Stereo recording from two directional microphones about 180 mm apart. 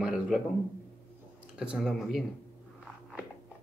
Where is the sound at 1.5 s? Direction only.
5° right (ahead or behind).